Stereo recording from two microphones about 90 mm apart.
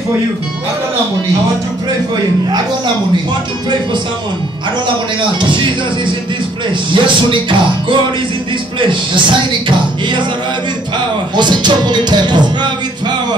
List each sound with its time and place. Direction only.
5.4 s speech: 65° right (ahead or behind)
6.9 s speech: 65° right (ahead or behind)
8.7 s speech: 65° right (ahead or behind)
11.3 s speech: 55° right (ahead or behind)